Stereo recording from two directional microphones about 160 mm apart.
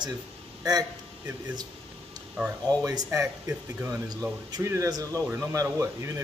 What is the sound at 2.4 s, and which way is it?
Speech, 10° right (ahead or behind).